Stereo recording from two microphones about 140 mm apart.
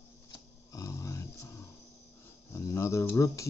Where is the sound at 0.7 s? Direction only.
25° left (ahead or behind).